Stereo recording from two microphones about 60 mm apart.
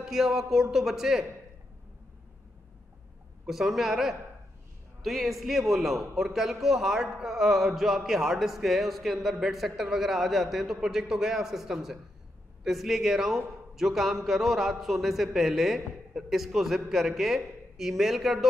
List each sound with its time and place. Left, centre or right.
0.0 s a man's voice: centre
3.4 s a man's voice: centre